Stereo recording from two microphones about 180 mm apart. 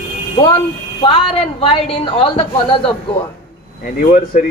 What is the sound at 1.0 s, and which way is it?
A woman's voice, 30° left (ahead or behind).